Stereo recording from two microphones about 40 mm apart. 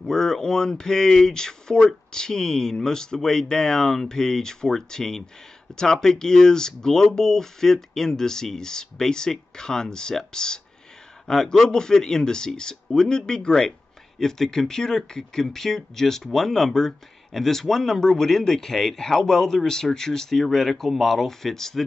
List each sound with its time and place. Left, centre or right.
0.0 s speech: centre